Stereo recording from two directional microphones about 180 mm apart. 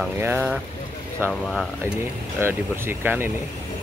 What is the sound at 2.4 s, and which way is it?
Speech, 10° right (ahead or behind).